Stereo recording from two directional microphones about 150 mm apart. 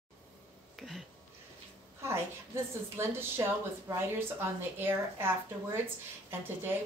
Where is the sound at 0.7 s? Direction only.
Centre (ahead or behind).